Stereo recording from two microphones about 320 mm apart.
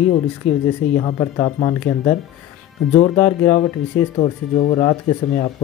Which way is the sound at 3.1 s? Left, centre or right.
Centre.